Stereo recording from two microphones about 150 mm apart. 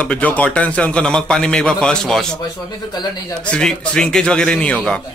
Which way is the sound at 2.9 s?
25° left (ahead or behind).